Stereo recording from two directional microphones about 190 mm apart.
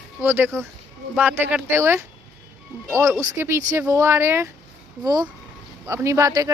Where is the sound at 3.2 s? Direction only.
15° right (ahead or behind).